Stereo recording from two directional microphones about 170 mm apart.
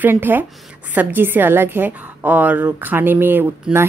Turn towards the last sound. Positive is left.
turn(degrees=-10)  # may be behind; listen again after turning